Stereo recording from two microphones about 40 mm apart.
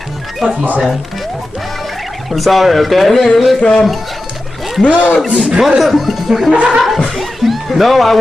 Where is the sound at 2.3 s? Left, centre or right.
Centre.